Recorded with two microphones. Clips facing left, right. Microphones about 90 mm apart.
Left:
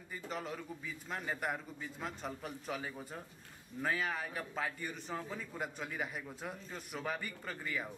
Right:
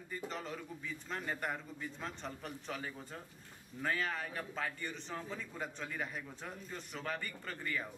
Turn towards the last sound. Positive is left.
turn(degrees=5)  # may be behind; listen again after turning